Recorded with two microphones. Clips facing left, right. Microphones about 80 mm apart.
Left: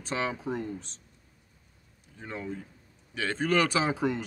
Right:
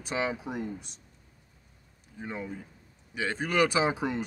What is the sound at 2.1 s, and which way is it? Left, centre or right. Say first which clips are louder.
Speech: even; centre.